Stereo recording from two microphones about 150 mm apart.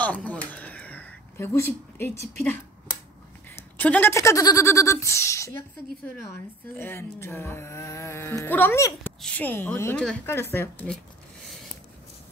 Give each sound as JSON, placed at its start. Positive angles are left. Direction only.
{"t": 0.0, "sound": "a sound", "side_deg": 10}
{"t": 3.7, "sound": "speech", "side_deg": 10}
{"t": 6.8, "sound": "speech", "side_deg": 15}
{"t": 9.9, "sound": "speech", "side_deg": 5}
{"t": 10.2, "sound": "speech", "side_deg": 15}